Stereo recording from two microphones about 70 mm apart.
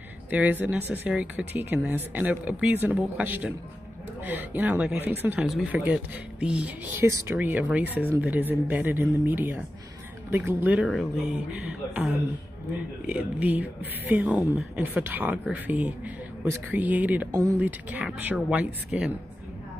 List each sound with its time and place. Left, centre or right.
0.3 s a woman's voice: right
7.0 s speech: right
17.3 s speech: right
17.6 s speech: right
18.9 s a woman's voice: centre